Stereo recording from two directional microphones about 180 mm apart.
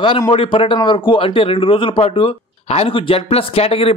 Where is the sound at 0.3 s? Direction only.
30° left (ahead or behind).